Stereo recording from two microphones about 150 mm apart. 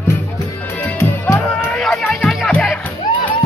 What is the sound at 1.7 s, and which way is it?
Music, centre (ahead or behind).